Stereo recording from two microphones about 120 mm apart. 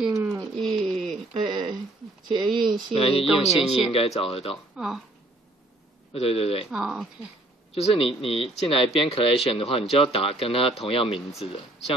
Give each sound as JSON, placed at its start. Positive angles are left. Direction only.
{"t": 0.1, "sound": "pigeon", "side_deg": -25}
{"t": 0.4, "sound": "pigeon", "side_deg": 5}
{"t": 1.3, "sound": "a sound", "side_deg": -40}
{"t": 2.9, "sound": "speech", "side_deg": 50}
{"t": 3.3, "sound": "speech", "side_deg": -5}
{"t": 3.9, "sound": "speech", "side_deg": 55}
{"t": 4.7, "sound": "speech", "side_deg": -5}
{"t": 6.1, "sound": "speech", "side_deg": 55}
{"t": 6.7, "sound": "speech", "side_deg": -5}
{"t": 7.7, "sound": "a man's voice", "side_deg": 55}